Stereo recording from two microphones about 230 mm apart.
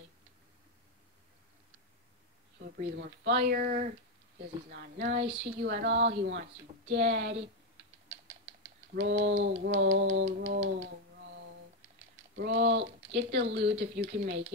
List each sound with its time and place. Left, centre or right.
3.0 s speech: right
4.9 s speech: right
5.6 s speech: right
9.0 s speech: right
9.8 s a sound: right
12.4 s speech: right